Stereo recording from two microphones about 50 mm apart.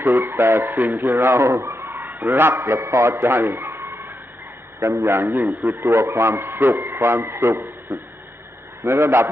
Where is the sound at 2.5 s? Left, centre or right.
Right.